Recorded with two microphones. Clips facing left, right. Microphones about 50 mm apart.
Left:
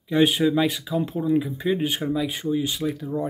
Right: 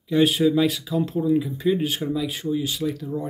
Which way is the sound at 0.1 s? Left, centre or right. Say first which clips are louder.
Right 1 dB; centre.